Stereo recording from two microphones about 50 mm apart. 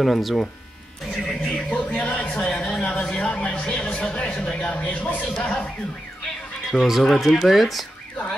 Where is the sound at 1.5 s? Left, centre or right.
Left.